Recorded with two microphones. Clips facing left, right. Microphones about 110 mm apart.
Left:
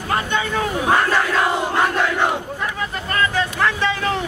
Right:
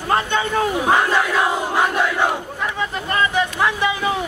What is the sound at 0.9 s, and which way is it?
Battle cry, 10° right (ahead or behind).